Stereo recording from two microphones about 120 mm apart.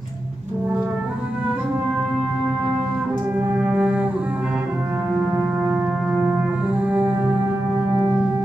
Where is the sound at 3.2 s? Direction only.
15° right (ahead or behind).